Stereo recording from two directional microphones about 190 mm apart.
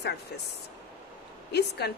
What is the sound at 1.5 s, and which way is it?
Speech, 60° left (ahead or behind).